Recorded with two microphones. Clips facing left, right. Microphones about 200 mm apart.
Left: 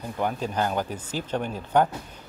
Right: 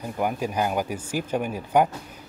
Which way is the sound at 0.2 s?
10° right (ahead or behind).